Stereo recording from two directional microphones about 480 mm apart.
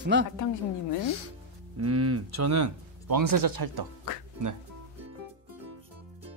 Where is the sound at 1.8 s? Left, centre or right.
Right.